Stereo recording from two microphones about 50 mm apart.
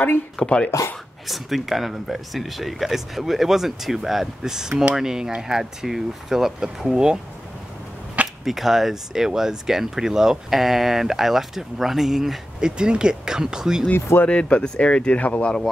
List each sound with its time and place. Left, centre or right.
0.4 s speech: centre
0.7 s speech: left
1.2 s speech: centre
8.5 s speech: centre
14.2 s speech: left